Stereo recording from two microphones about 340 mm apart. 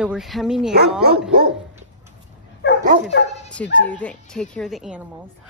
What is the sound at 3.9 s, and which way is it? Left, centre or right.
Speech, centre.